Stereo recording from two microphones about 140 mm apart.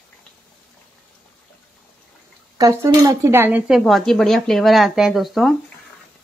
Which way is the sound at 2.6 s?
25° right (ahead or behind).